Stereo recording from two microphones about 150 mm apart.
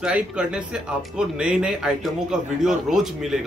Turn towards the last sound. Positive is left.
turn(degrees=-5)  # may be behind; listen again after turning